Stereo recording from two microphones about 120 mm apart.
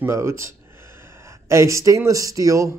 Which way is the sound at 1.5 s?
25° right (ahead or behind).